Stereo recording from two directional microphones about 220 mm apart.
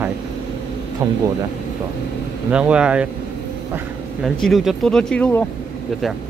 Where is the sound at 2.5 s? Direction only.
5° right (ahead or behind).